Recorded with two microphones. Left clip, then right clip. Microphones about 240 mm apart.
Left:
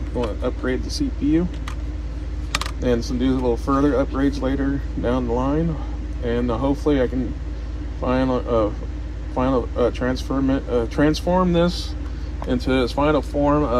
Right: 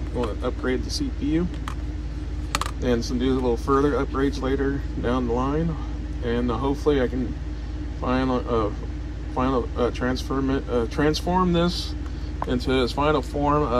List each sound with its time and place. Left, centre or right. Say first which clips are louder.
0.2 s speech: left 2 dB; centre
2.5 s speech: left 3 dB; centre